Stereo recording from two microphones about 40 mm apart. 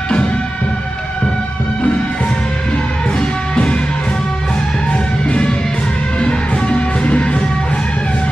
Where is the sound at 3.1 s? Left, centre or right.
Left.